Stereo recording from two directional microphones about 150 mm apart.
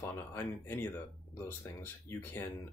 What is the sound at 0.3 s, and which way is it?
Speech, 15° left (ahead or behind).